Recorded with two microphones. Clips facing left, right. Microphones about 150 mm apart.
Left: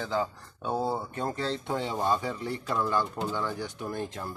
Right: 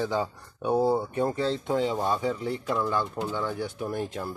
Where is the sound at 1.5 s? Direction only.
5° right (ahead or behind).